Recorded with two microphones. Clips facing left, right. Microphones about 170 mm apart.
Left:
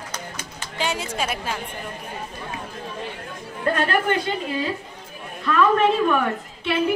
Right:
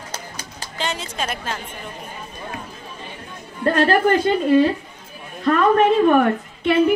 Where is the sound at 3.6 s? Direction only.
35° right (ahead or behind).